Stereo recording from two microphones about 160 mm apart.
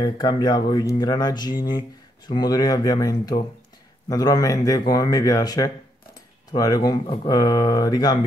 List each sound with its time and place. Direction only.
0.0 s speech: 25° left (ahead or behind)